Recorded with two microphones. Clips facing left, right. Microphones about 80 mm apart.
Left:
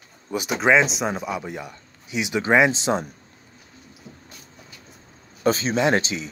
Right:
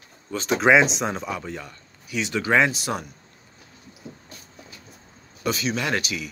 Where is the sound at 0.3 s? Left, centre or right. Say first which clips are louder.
Right 1 dB; centre.